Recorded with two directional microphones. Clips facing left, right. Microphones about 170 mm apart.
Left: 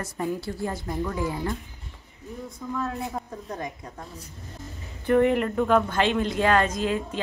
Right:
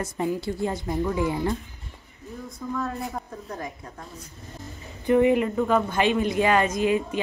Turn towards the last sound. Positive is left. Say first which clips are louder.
# right 4 dB
turn(degrees=-10)  # may be behind; listen again after turning